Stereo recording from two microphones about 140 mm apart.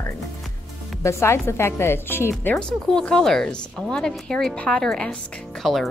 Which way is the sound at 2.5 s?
5° left (ahead or behind).